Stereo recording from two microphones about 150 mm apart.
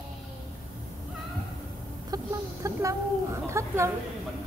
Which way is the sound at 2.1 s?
20° right (ahead or behind).